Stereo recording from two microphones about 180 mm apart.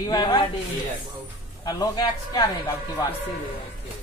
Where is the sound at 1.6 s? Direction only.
20° left (ahead or behind).